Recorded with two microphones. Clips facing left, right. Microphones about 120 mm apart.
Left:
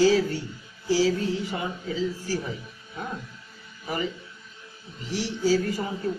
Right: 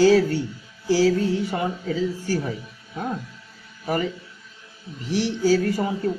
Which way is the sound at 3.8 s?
50° right (ahead or behind).